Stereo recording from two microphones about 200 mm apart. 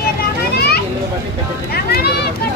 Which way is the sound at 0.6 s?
55° left (ahead or behind).